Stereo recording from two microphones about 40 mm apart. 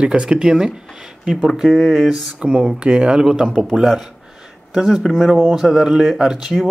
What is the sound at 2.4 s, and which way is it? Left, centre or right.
Speech, right.